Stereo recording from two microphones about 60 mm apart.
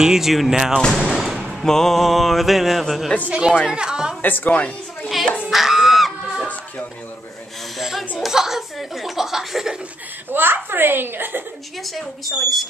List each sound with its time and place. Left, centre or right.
0.0 s speech: centre
1.4 s a sound: centre
3.3 s a woman's voice: centre
4.2 s speech: left
5.0 s a sound: centre
5.5 s music: centre
8.2 s chuckle: centre
10.3 s a child's voice: right
11.8 s a sound: centre